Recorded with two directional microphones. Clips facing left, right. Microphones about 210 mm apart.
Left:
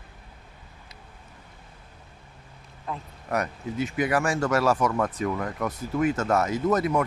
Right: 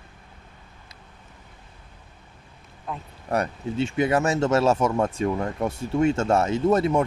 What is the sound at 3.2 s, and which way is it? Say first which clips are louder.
Speech: right 3 dB; 30° right (ahead or behind).